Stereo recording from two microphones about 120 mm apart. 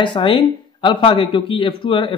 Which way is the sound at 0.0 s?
45° left (ahead or behind).